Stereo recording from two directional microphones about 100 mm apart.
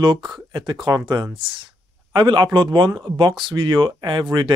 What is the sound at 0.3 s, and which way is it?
Speech, 50° right (ahead or behind).